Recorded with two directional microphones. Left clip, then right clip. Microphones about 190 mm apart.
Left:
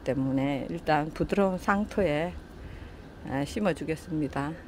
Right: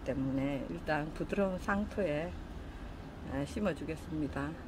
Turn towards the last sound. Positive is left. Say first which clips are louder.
# left 7 dB
turn(degrees=45)  # may be behind; listen again after turning